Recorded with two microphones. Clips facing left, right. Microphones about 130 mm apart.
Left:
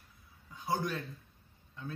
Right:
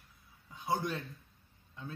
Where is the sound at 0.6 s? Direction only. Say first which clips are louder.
Even; 20° right (ahead or behind).